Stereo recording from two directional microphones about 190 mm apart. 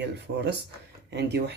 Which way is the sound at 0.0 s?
60° right (ahead or behind).